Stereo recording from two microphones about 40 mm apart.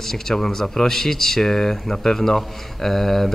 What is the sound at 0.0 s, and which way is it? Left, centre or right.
Speech, centre.